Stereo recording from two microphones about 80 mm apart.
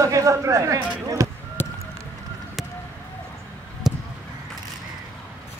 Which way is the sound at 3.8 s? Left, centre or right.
Centre.